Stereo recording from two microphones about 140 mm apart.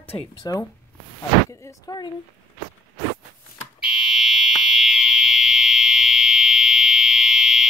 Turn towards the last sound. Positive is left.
turn(degrees=-5)  # may be behind; listen again after turning